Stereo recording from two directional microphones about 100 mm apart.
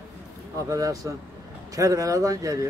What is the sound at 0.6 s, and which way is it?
Speech, 35° right (ahead or behind).